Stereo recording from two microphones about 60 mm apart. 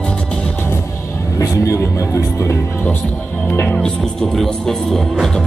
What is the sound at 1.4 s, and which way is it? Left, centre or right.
Music, left.